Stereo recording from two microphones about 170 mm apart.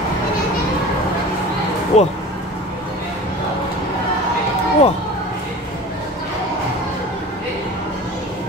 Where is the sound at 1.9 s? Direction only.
40° left (ahead or behind).